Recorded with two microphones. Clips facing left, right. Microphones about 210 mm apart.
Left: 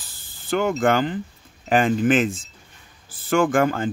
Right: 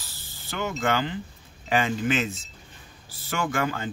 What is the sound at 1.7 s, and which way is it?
Speech, 50° left (ahead or behind).